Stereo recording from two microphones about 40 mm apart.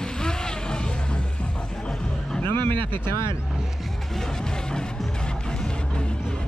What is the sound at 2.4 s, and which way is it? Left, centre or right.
Speech, left.